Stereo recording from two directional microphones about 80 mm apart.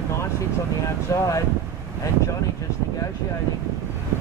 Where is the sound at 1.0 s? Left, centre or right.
Left.